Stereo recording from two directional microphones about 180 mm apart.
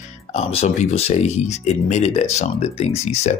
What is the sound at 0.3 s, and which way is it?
Speech, 35° left (ahead or behind).